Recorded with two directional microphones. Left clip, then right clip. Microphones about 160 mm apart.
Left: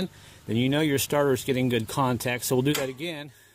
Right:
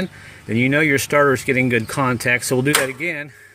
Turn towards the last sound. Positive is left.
turn(degrees=30)  # may be behind; listen again after turning